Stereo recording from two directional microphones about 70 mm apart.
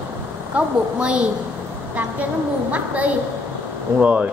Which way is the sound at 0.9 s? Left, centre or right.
Centre.